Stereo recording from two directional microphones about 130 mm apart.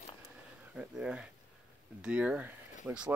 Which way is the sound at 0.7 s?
10° right (ahead or behind).